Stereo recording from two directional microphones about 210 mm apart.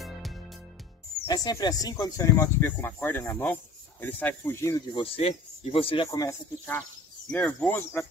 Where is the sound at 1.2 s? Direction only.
15° left (ahead or behind).